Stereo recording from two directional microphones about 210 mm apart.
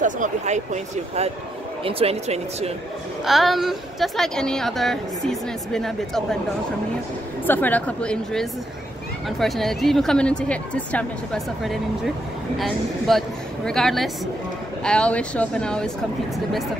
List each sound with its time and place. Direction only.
0.0 s speech: 35° right (ahead or behind)
1.9 s speech: 30° right (ahead or behind)
3.3 s a woman's voice: centre (ahead or behind)
7.4 s a woman's voice: 10° left (ahead or behind)